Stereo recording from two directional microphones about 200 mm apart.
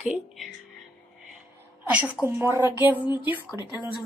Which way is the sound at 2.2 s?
10° right (ahead or behind).